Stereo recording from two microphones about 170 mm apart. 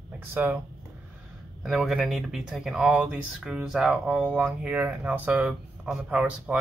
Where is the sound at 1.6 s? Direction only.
Centre (ahead or behind).